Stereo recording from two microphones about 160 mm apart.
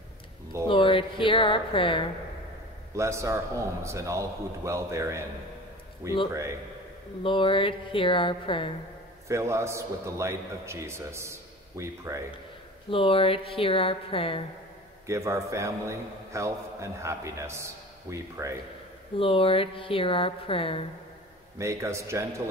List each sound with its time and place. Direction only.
0.7 s speech: 30° left (ahead or behind)
2.9 s a man's voice: 20° right (ahead or behind)
7.2 s speech: 30° left (ahead or behind)
9.3 s a man's voice: 20° right (ahead or behind)
12.9 s speech: 35° left (ahead or behind)
15.0 s a man's voice: 20° right (ahead or behind)
19.1 s speech: 35° left (ahead or behind)
21.5 s a man's voice: 20° right (ahead or behind)